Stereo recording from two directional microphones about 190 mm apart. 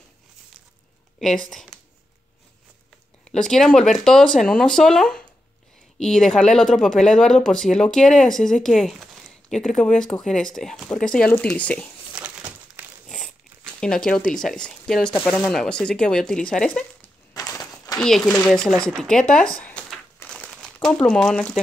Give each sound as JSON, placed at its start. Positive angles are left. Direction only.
{"t": 1.2, "sound": "speech", "side_deg": 0}
{"t": 3.3, "sound": "speech", "side_deg": 5}
{"t": 12.2, "sound": "crumpling", "side_deg": -5}
{"t": 13.7, "sound": "speech", "side_deg": 5}
{"t": 17.3, "sound": "a sound", "side_deg": 20}
{"t": 17.9, "sound": "speech", "side_deg": 5}